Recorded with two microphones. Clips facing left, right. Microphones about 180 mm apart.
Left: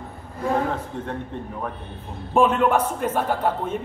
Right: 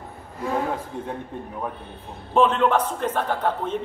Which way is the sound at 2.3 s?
10° left (ahead or behind).